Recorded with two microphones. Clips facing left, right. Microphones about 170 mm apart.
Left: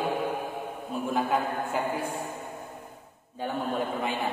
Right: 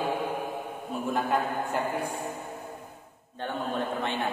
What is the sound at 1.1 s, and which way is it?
Speech, centre (ahead or behind).